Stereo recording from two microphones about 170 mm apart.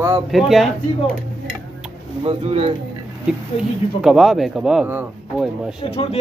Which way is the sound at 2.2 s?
35° right (ahead or behind).